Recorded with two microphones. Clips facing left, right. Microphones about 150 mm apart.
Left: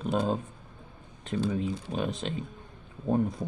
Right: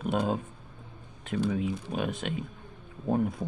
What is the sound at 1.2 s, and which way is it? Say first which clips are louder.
Speech: even; 30° left (ahead or behind).